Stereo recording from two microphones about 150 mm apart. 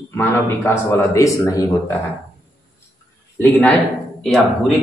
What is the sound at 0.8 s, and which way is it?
A man's voice, 20° left (ahead or behind).